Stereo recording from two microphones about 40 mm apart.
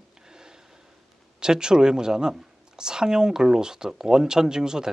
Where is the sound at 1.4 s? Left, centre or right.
Centre.